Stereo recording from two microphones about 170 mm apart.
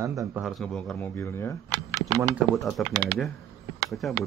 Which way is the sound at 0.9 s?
15° left (ahead or behind).